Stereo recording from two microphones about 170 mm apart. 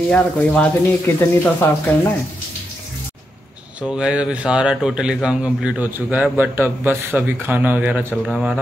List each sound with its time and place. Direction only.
0.1 s speech: 10° left (ahead or behind)
3.8 s a man's voice: 5° right (ahead or behind)